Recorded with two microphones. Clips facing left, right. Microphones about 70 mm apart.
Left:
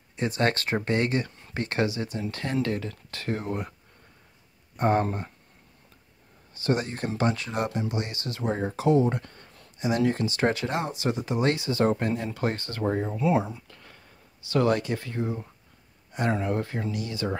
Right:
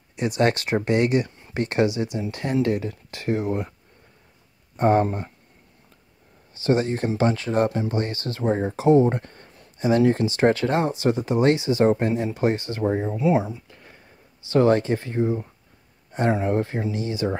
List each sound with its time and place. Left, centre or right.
0.1 s speech: centre
4.7 s speech: right
6.5 s speech: right
13.2 s speech: centre
14.4 s speech: right